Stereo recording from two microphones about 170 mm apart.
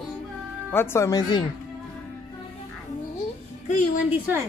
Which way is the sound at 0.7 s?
15° left (ahead or behind).